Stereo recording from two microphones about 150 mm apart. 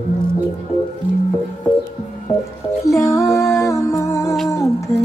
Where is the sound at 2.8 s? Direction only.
20° left (ahead or behind).